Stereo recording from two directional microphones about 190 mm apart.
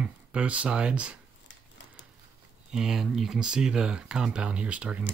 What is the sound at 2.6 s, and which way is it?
Speech, 5° right (ahead or behind).